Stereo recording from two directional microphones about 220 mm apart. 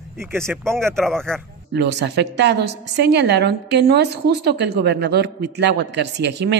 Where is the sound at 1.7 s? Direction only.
50° right (ahead or behind).